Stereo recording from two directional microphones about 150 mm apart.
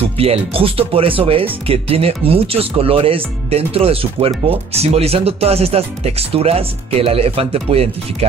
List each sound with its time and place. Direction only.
0.0 s speech: 40° right (ahead or behind)